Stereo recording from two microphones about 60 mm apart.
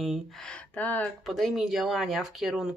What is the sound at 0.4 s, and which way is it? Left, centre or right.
Speech, centre.